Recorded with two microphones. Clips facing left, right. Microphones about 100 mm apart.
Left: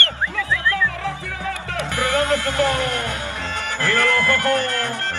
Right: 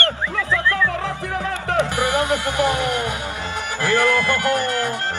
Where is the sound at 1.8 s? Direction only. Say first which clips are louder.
Right 1 dB; 20° right (ahead or behind).